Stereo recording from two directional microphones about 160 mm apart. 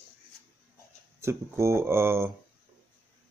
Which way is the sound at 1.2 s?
15° right (ahead or behind).